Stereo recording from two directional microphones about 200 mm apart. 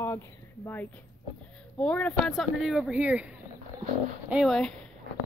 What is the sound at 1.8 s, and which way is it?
Speech, 5° left (ahead or behind).